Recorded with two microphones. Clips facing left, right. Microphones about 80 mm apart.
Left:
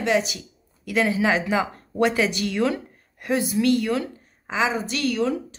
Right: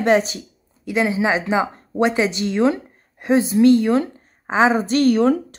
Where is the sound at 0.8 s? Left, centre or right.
Right.